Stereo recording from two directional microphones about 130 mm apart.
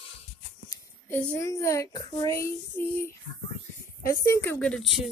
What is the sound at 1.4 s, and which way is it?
Female singing, 25° left (ahead or behind).